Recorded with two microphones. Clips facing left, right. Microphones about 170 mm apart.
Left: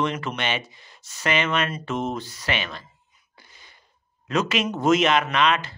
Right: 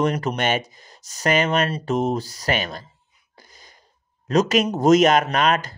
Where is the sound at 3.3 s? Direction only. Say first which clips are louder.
Right 3 dB; 40° right (ahead or behind).